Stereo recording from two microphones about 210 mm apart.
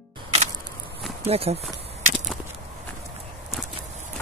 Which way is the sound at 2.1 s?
Centre (ahead or behind).